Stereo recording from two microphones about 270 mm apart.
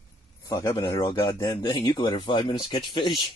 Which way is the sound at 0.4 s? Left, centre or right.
Centre.